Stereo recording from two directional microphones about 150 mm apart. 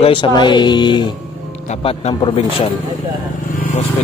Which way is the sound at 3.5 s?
70° left (ahead or behind).